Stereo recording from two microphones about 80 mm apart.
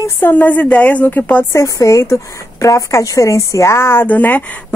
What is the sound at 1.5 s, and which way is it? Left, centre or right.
A woman's voice, left.